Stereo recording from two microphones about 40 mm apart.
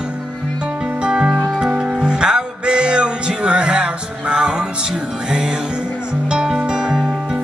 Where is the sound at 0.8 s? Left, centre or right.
Right.